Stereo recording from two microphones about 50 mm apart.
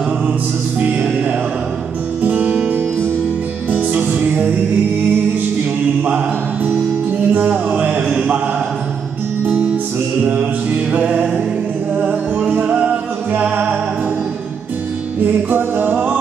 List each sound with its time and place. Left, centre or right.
2.2 s music: right
3.7 s music: right
6.0 s mantra: right
6.7 s music: right
10.2 s music: right
15.2 s music: right